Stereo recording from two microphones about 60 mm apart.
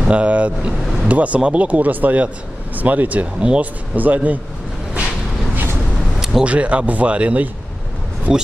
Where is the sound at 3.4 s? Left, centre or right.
Centre.